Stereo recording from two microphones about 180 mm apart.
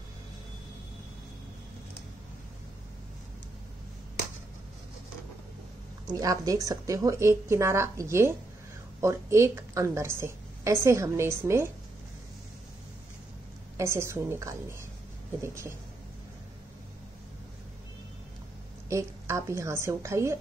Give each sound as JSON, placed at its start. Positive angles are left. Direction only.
{"t": 6.0, "sound": "a woman's voice", "side_deg": -20}
{"t": 13.7, "sound": "a woman's voice", "side_deg": -15}
{"t": 18.9, "sound": "a woman's voice", "side_deg": -15}